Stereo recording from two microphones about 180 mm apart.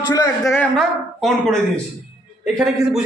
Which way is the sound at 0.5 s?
5° left (ahead or behind).